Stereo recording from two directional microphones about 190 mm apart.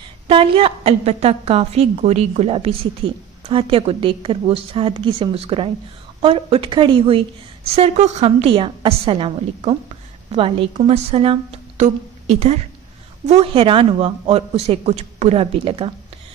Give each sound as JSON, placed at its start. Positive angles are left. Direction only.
{"t": 0.3, "sound": "a woman's voice", "side_deg": -30}